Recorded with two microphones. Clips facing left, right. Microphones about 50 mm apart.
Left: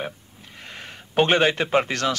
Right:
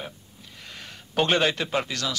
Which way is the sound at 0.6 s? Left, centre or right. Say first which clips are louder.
Left 4 dB; left.